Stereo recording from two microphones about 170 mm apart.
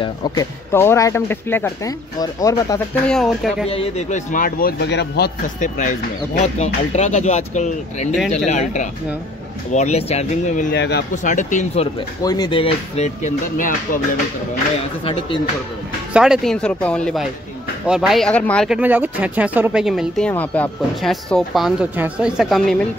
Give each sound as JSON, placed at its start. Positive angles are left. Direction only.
{"t": 0.0, "sound": "speech", "side_deg": 25}
{"t": 3.1, "sound": "speech", "side_deg": 0}
{"t": 3.6, "sound": "speech", "side_deg": 35}
{"t": 5.6, "sound": "speech", "side_deg": 50}
{"t": 8.1, "sound": "speech", "side_deg": 0}
{"t": 8.5, "sound": "speech", "side_deg": 45}
{"t": 10.7, "sound": "speech", "side_deg": 80}
{"t": 11.2, "sound": "speech", "side_deg": 45}
{"t": 12.2, "sound": "speech", "side_deg": 25}
{"t": 15.0, "sound": "speech", "side_deg": 30}
{"t": 16.1, "sound": "speech", "side_deg": -5}
{"t": 18.7, "sound": "speech", "side_deg": -10}
{"t": 20.2, "sound": "speech", "side_deg": 10}